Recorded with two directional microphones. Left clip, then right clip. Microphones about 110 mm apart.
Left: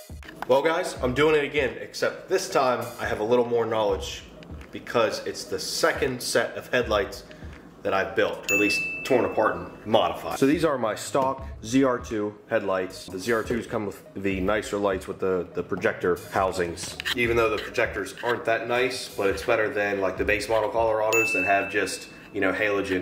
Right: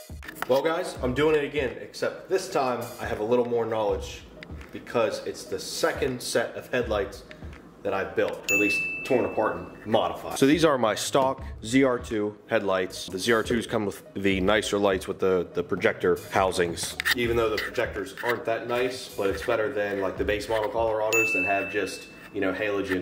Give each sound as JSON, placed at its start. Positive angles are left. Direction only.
{"t": 0.5, "sound": "a man's voice", "side_deg": -5}
{"t": 10.3, "sound": "speech", "side_deg": -35}
{"t": 11.6, "sound": "a man's voice", "side_deg": -15}
{"t": 12.4, "sound": "speech", "side_deg": -30}
{"t": 17.2, "sound": "speech", "side_deg": -10}